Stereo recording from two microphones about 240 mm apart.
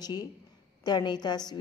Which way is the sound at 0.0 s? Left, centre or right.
Centre.